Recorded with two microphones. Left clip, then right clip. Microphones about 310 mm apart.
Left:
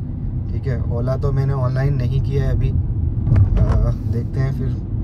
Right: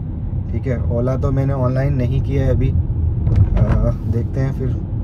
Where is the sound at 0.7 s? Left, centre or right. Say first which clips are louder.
Right 4 dB; centre.